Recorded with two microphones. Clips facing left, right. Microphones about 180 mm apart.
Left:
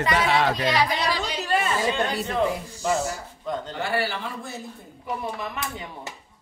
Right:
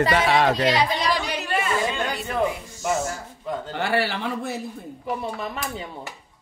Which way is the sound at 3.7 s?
70° right (ahead or behind).